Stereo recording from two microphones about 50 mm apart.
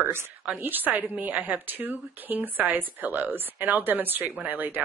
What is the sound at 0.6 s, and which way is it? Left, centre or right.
A woman's voice, right.